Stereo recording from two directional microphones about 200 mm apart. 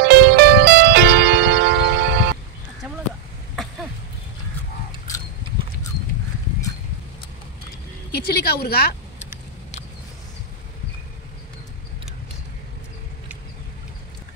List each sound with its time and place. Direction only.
0.0 s music: 55° right (ahead or behind)
8.3 s a woman's voice: 50° left (ahead or behind)